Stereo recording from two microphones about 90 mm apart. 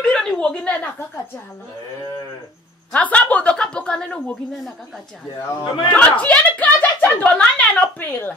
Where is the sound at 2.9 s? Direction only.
15° left (ahead or behind).